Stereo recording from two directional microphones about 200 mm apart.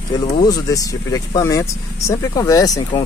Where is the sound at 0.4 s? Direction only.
20° left (ahead or behind).